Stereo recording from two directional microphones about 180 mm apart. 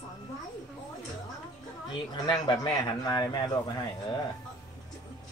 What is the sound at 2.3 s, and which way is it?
Speech, 20° left (ahead or behind).